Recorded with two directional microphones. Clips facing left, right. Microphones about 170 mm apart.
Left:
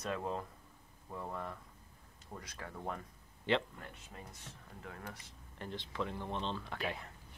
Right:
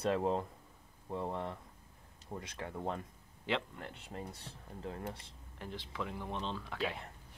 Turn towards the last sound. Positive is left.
turn(degrees=0)  # may be behind; listen again after turning